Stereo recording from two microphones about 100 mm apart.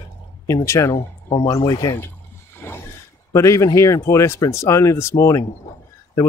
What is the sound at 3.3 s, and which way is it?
Speech, 30° left (ahead or behind).